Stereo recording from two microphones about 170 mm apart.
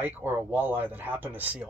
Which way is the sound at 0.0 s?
10° right (ahead or behind).